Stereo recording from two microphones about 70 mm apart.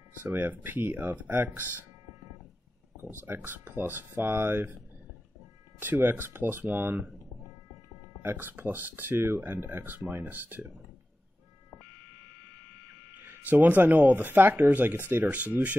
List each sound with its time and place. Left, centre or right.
0.2 s speech: right
3.0 s speech: right
5.8 s speech: right
8.2 s speech: right
13.2 s speech: right